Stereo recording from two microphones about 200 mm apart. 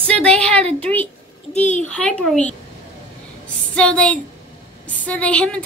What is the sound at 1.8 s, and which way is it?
Speech, 5° left (ahead or behind).